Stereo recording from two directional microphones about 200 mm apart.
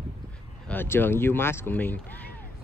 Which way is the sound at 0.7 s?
10° left (ahead or behind).